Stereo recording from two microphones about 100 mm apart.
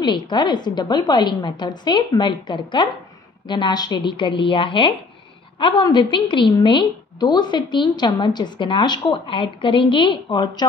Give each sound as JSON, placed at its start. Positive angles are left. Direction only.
{"t": 0.0, "sound": "a woman's voice", "side_deg": 50}